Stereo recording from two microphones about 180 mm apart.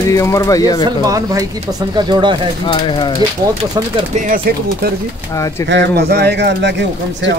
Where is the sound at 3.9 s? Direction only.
45° right (ahead or behind).